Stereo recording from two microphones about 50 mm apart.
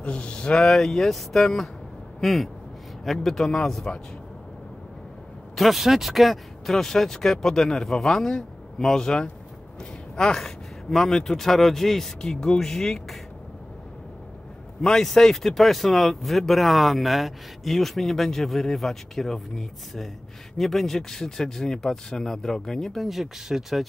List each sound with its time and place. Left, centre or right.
0.0 s speech: left
0.6 s speech: centre
5.6 s speech: centre
14.8 s speech: centre
23.0 s speech: centre